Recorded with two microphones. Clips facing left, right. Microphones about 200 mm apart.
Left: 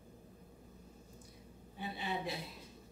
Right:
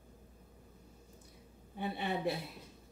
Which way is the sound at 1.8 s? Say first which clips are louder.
Right 4 dB; 55° right (ahead or behind).